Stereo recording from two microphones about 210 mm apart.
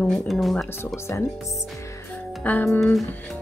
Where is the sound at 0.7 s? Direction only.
10° left (ahead or behind).